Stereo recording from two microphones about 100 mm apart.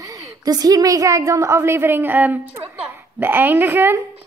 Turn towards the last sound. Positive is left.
turn(degrees=-25)  # may be behind; listen again after turning